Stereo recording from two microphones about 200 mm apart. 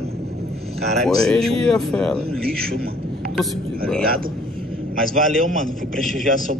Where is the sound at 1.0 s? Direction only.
Centre (ahead or behind).